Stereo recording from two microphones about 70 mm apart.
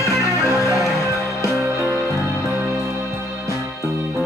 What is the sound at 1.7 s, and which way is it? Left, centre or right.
Music, right.